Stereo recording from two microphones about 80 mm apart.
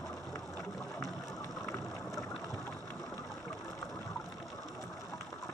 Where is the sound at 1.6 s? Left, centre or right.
Left.